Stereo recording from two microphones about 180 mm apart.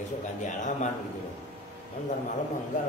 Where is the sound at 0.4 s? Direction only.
45° left (ahead or behind).